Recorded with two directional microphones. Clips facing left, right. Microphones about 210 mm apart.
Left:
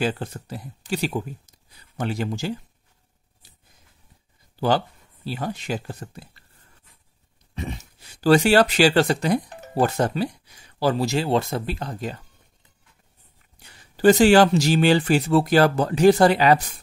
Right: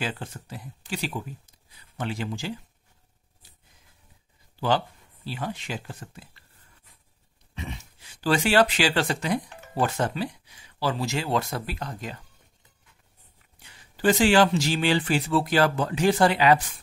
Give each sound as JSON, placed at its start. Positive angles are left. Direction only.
{"t": 0.0, "sound": "speech", "side_deg": 40}
{"t": 4.6, "sound": "speech", "side_deg": 40}
{"t": 7.5, "sound": "speech", "side_deg": 40}
{"t": 13.6, "sound": "speech", "side_deg": 40}